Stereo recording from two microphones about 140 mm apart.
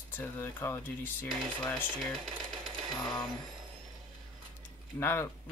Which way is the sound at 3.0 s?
30° left (ahead or behind).